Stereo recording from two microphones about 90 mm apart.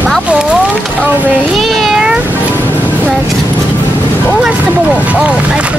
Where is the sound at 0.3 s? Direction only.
10° right (ahead or behind).